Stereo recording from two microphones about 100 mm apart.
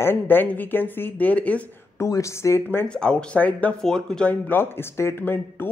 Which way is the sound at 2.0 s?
30° left (ahead or behind).